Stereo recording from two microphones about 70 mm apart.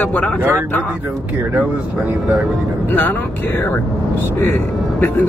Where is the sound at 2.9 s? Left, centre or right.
Left.